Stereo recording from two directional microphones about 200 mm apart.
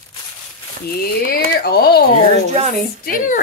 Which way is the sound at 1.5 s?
50° left (ahead or behind).